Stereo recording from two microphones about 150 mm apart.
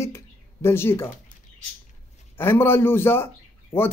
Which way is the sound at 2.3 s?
15° left (ahead or behind).